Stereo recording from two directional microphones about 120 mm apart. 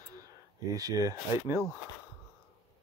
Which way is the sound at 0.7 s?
30° right (ahead or behind).